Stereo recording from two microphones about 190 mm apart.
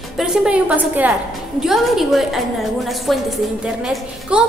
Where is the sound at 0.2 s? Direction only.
5° right (ahead or behind).